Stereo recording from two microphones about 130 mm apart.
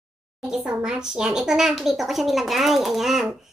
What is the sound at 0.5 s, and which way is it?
Speech, 5° right (ahead or behind).